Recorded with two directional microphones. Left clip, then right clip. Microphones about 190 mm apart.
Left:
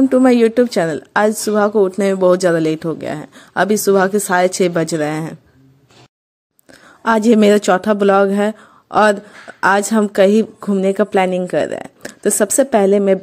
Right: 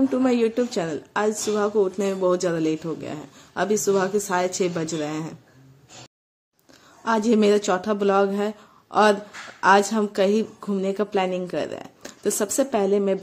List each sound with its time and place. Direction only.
0.1 s speech: 45° left (ahead or behind)
7.1 s speech: 45° left (ahead or behind)